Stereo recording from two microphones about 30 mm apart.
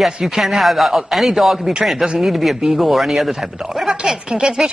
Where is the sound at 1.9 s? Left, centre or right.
Centre.